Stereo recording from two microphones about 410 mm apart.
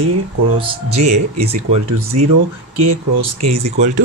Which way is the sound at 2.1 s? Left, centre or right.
Right.